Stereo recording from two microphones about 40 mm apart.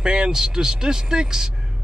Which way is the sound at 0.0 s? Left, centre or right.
Centre.